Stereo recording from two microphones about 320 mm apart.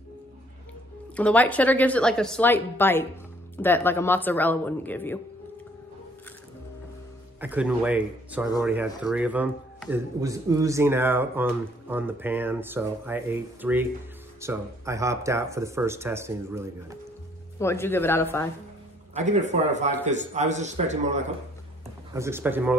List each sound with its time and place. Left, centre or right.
1.1 s a woman's voice: centre
7.3 s a woman's voice: centre
17.6 s speech: centre
19.1 s a man's voice: right
22.1 s speech: centre